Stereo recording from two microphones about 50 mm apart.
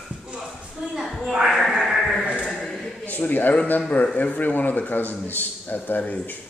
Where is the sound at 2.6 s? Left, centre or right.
Centre.